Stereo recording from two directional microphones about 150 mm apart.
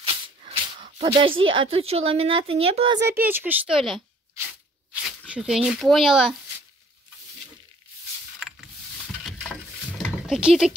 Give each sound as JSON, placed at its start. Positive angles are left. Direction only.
{"t": 0.0, "sound": "speech", "side_deg": -40}
{"t": 3.3, "sound": "speech", "side_deg": -15}
{"t": 5.3, "sound": "speech", "side_deg": -5}
{"t": 8.4, "sound": "mechanisms", "side_deg": -5}
{"t": 10.0, "sound": "a sound", "side_deg": -5}